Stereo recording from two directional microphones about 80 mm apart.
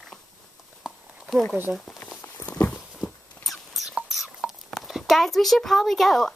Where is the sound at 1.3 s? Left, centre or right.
Centre.